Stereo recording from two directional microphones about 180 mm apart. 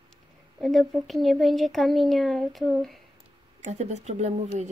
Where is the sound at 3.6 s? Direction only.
40° right (ahead or behind).